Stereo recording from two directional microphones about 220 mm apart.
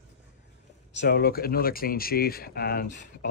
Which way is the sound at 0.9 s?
45° left (ahead or behind).